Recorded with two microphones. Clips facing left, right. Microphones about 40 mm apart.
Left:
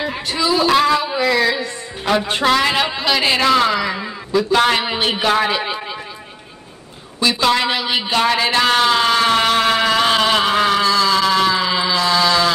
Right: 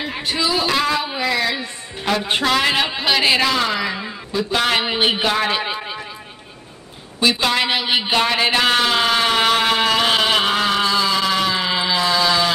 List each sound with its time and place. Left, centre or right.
0.0 s a sound: centre
0.7 s speech: centre
1.0 s a sound: centre
2.5 s speech: centre
4.3 s a man's voice: centre
5.2 s speech: centre
7.2 s speech: centre
10.8 s a sound: centre
11.1 s speech: centre
11.9 s mantra: centre